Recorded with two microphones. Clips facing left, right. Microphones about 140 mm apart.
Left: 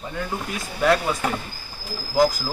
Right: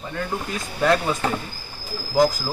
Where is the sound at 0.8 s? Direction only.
Centre (ahead or behind).